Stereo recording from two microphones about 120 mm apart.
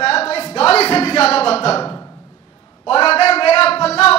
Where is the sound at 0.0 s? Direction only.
55° left (ahead or behind).